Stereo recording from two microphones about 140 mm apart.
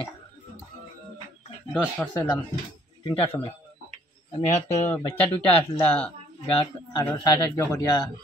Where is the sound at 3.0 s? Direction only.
35° left (ahead or behind).